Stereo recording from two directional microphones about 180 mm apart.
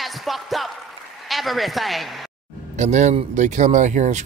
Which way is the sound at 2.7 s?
40° right (ahead or behind).